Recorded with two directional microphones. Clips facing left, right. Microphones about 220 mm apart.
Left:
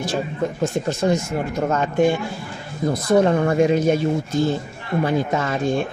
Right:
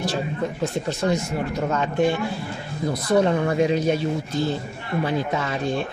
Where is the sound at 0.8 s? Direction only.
45° left (ahead or behind).